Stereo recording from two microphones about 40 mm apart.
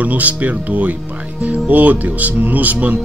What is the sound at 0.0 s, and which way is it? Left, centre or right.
Speech, right.